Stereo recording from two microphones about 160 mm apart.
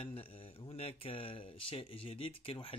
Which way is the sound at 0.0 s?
35° left (ahead or behind).